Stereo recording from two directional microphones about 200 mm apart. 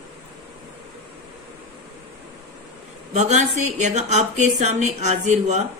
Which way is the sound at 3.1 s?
35° right (ahead or behind).